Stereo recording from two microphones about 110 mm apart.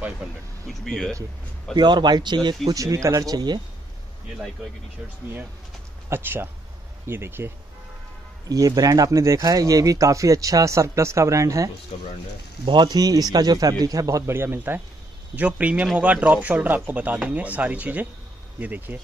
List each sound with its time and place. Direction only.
0.2 s speech: 10° right (ahead or behind)
0.7 s speech: centre (ahead or behind)
1.8 s speech: 40° right (ahead or behind)
2.7 s speech: 30° right (ahead or behind)
6.0 s speech: 20° right (ahead or behind)
8.5 s speech: 35° right (ahead or behind)
11.9 s speech: 70° left (ahead or behind)
12.6 s speech: 45° right (ahead or behind); by 18.9 s 15° right (ahead or behind)